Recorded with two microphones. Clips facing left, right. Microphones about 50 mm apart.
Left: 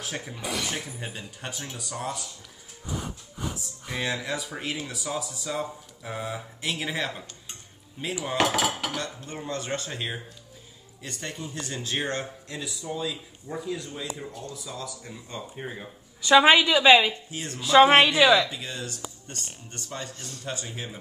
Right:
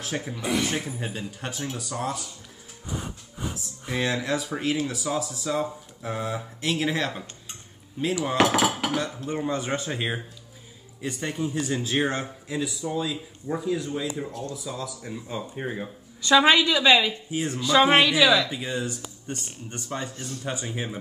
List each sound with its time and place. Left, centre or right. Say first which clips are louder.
0.1 s speech: right 7 dB; centre
16.2 s a woman's voice: left 1 dB; centre
17.3 s speech: right 7 dB; centre
17.6 s a woman's voice: left 3 dB; centre
18.0 s a woman's voice: left 1 dB; left
18.5 s speech: right 6 dB; centre